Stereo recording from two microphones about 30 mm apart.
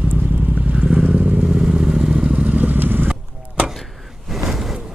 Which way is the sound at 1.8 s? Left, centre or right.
Right.